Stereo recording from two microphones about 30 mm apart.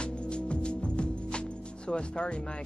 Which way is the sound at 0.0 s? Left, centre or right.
Left.